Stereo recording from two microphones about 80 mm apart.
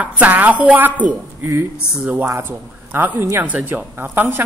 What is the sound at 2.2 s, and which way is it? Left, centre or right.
A woman's voice, right.